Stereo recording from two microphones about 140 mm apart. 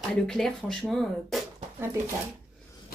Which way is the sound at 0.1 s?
5° left (ahead or behind).